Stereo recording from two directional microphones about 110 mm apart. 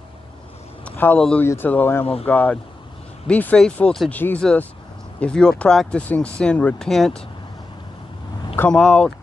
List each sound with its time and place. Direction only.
0.8 s a sound: 15° left (ahead or behind)
1.4 s speech: 20° left (ahead or behind); by 7.2 s 5° left (ahead or behind)
8.6 s speech: 10° left (ahead or behind)